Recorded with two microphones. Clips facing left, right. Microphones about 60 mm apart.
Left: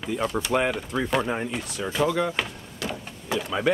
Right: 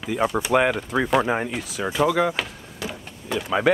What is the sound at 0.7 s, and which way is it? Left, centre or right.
Speech, centre.